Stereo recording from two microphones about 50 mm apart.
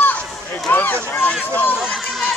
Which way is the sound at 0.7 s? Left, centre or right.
Left.